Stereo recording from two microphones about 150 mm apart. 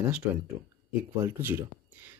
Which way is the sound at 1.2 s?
15° right (ahead or behind).